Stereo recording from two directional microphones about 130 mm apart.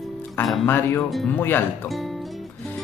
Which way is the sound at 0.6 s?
15° left (ahead or behind).